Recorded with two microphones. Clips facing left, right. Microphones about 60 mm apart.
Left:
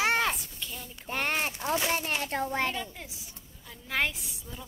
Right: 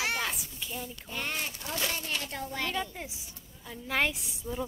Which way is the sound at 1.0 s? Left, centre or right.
Left.